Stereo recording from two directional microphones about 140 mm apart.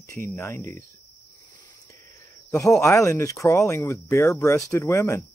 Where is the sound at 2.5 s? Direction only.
Centre (ahead or behind).